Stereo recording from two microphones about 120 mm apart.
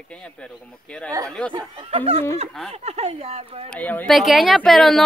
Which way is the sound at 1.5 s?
50° right (ahead or behind).